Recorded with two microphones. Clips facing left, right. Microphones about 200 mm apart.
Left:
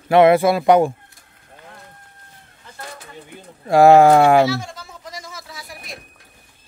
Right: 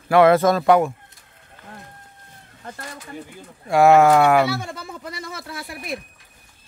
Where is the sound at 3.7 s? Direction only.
35° left (ahead or behind).